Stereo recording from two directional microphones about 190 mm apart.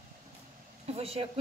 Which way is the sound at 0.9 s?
30° right (ahead or behind).